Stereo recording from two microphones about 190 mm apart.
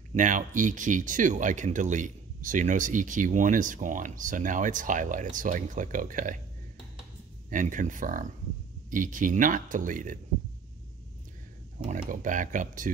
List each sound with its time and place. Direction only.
0.1 s speech: 40° right (ahead or behind)
7.4 s speech: 45° right (ahead or behind)
12.1 s speech: 45° right (ahead or behind)